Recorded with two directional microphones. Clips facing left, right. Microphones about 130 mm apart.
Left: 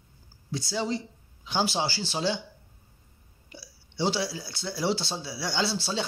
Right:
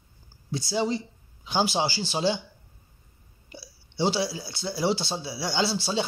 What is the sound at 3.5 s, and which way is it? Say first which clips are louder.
Speech: right 3 dB; 25° right (ahead or behind).